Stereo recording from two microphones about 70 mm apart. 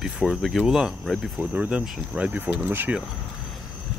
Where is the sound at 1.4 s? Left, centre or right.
Centre.